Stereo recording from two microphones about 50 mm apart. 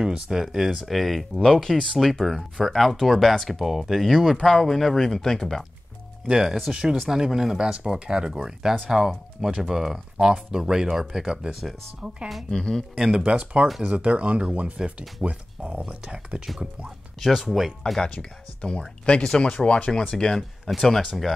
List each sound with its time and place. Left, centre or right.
0.0 s speech: centre
4.4 s speech: centre
6.2 s speech: centre
12.4 s speech: centre
12.9 s speech: centre
13.2 s speech: right
17.3 s speech: centre
18.0 s speech: left
21.0 s speech: centre